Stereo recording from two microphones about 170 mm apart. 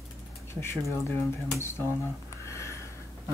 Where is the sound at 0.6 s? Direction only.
15° left (ahead or behind).